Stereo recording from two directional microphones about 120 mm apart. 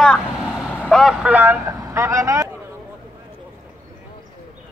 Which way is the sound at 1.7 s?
25° right (ahead or behind).